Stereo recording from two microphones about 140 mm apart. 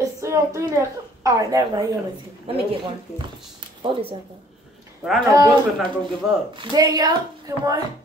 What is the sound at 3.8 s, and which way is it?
Speech, 35° right (ahead or behind).